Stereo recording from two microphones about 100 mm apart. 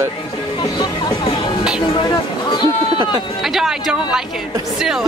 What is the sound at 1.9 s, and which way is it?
Speech, 50° left (ahead or behind).